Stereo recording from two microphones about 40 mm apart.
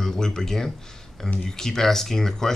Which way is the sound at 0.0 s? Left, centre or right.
Centre.